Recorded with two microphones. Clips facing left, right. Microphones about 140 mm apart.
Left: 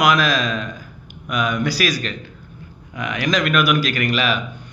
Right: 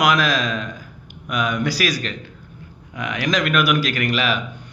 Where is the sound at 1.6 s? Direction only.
20° right (ahead or behind).